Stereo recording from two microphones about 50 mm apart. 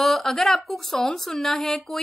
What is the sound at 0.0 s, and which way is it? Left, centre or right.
A woman's voice, centre.